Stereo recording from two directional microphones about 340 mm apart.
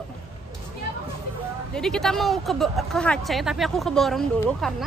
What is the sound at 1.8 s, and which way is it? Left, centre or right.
Speech, centre.